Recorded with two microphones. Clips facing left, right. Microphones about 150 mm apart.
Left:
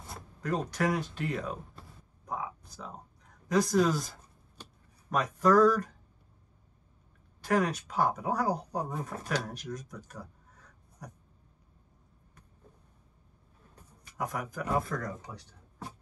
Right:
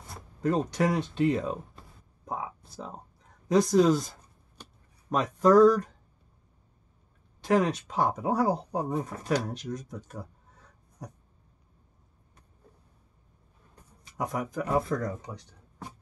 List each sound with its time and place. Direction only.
0.4 s speech: 25° right (ahead or behind)
1.6 s a sound: centre (ahead or behind)
2.2 s a sound: 30° right (ahead or behind)
3.7 s speech: 20° right (ahead or behind)
5.1 s speech: 25° right (ahead or behind)
7.4 s speech: 25° right (ahead or behind)
9.1 s speech: centre (ahead or behind)
9.5 s speech: 20° right (ahead or behind)
14.0 s speech: 20° right (ahead or behind)